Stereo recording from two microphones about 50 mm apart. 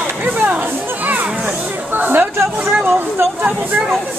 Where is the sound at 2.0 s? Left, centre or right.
Right.